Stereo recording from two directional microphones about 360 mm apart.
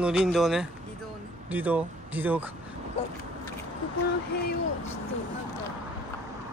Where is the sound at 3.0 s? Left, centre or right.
Centre.